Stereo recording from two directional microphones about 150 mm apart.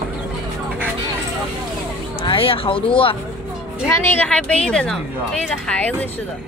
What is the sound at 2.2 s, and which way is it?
Speech, 35° left (ahead or behind).